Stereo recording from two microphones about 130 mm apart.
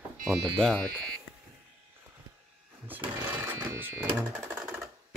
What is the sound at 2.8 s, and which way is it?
Sewing machine, 15° right (ahead or behind).